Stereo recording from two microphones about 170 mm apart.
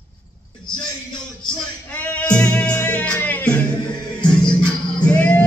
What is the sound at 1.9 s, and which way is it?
Music, 10° left (ahead or behind).